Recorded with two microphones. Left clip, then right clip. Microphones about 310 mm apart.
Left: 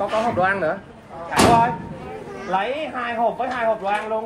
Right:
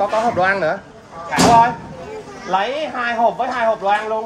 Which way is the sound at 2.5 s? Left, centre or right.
Right.